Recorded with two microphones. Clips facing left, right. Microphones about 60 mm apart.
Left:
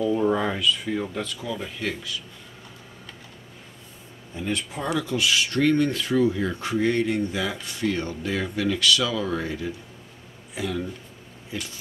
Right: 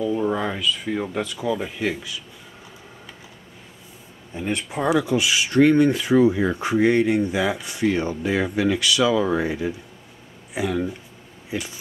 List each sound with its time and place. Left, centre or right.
0.0 s speech: centre
0.9 s speech: centre
4.6 s speech: centre